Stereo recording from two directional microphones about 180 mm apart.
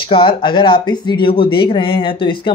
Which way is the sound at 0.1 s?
30° left (ahead or behind).